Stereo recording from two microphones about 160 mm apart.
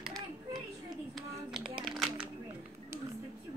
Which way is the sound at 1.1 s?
Centre (ahead or behind).